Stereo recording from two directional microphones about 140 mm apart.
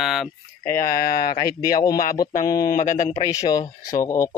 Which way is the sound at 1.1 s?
30° left (ahead or behind).